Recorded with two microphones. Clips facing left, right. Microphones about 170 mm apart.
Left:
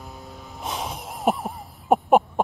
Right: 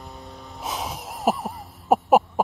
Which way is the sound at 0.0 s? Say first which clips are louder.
Even; centre (ahead or behind).